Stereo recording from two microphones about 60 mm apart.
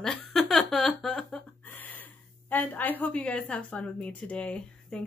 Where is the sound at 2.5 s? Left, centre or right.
Left.